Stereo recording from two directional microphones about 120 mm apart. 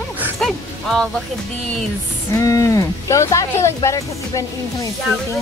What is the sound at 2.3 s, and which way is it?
Speech, 30° left (ahead or behind).